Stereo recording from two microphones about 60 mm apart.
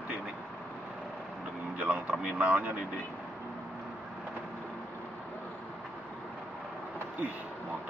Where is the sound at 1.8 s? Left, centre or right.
Right.